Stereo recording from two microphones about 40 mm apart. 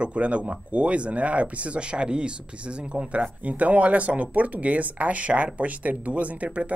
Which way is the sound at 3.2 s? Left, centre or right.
Right.